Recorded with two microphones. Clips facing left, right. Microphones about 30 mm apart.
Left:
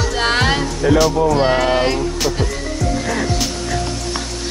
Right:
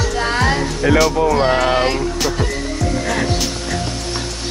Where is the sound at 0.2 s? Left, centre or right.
Left.